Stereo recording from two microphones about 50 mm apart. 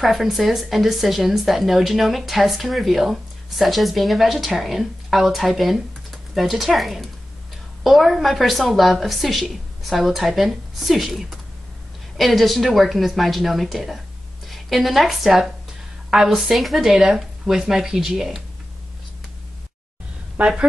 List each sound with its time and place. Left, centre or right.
0.0 s a woman's voice: centre
20.3 s a woman's voice: centre